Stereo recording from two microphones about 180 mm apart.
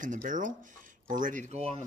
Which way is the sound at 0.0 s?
45° right (ahead or behind).